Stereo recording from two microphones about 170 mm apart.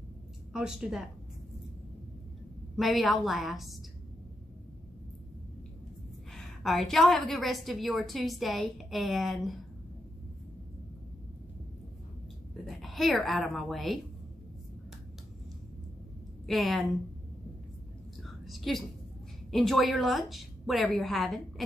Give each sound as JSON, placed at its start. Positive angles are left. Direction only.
{"t": 0.5, "sound": "a woman's voice", "side_deg": -5}
{"t": 2.7, "sound": "a woman's voice", "side_deg": 0}
{"t": 6.3, "sound": "a woman's voice", "side_deg": 0}
{"t": 12.6, "sound": "a woman's voice", "side_deg": 0}
{"t": 16.4, "sound": "a woman's voice", "side_deg": 0}
{"t": 18.2, "sound": "a sound", "side_deg": 0}
{"t": 19.5, "sound": "a woman's voice", "side_deg": 0}